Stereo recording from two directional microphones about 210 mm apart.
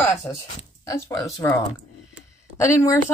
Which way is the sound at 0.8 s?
15° left (ahead or behind).